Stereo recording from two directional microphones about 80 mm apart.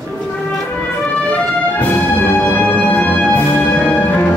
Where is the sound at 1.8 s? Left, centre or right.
Left.